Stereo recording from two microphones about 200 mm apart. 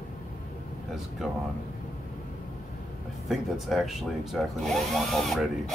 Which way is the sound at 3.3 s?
Centre (ahead or behind).